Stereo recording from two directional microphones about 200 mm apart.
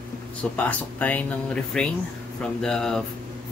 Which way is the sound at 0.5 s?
10° left (ahead or behind).